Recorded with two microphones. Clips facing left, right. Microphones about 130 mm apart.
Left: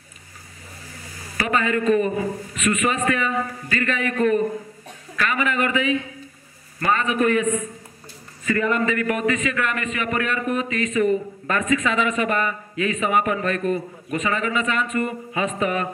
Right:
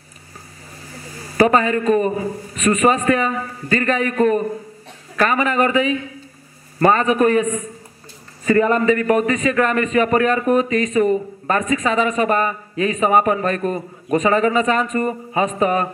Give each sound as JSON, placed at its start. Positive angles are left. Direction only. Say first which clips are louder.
{"t": 1.3, "sound": "a man's voice", "louder": "right 7 dB", "side_deg": -35}